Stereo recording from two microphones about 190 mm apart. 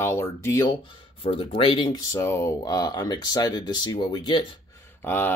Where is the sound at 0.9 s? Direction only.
30° left (ahead or behind).